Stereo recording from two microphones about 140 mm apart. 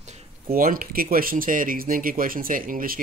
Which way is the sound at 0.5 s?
90° right.